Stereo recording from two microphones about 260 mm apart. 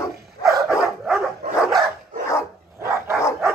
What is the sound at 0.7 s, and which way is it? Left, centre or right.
Dog, centre.